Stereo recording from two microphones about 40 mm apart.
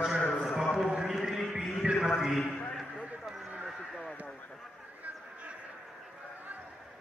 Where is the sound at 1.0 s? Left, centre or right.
Centre.